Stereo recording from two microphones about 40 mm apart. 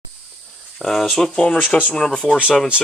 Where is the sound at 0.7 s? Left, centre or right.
Centre.